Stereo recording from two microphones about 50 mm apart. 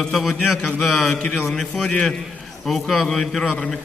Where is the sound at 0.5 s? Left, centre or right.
Centre.